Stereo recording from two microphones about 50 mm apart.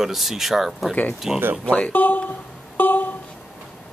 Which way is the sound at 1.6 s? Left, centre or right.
Left.